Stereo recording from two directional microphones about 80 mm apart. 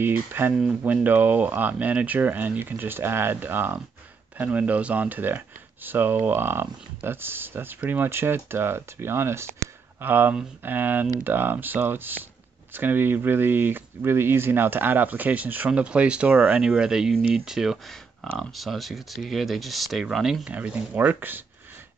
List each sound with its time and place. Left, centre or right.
0.0 s speech: right
16.3 s speech: right
16.6 s speech: centre
20.4 s speech: centre